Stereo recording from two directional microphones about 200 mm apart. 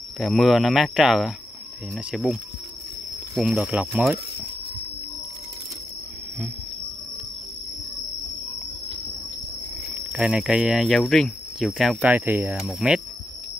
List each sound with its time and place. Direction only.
0.2 s speech: centre (ahead or behind)
3.3 s speech: centre (ahead or behind)
10.1 s speech: 5° right (ahead or behind)